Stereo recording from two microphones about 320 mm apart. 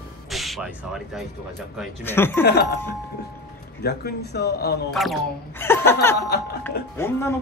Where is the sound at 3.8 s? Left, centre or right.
Left.